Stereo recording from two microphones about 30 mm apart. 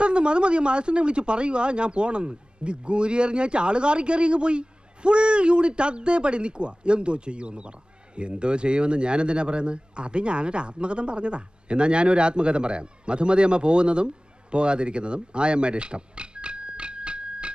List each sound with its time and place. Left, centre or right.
0.0 s speech: right